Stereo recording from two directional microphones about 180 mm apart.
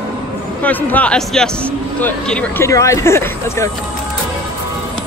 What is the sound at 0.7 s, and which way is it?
Speech, 10° left (ahead or behind).